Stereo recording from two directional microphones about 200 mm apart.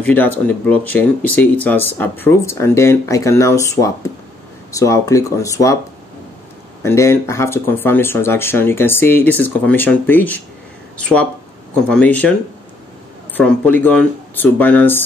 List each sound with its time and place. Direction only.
0.0 s speech: 5° left (ahead or behind)
6.8 s speech: 15° left (ahead or behind)
13.4 s speech: 5° left (ahead or behind)